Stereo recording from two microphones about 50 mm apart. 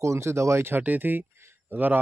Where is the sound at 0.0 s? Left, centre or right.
Right.